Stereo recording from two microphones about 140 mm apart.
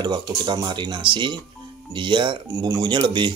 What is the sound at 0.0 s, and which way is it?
Speech, 35° right (ahead or behind).